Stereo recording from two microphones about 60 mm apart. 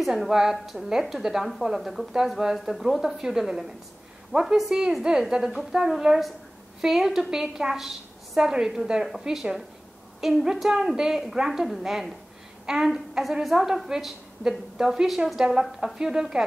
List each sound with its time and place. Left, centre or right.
0.0 s a woman's voice: centre